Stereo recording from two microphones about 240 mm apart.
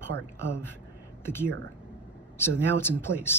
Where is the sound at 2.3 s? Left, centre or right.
Centre.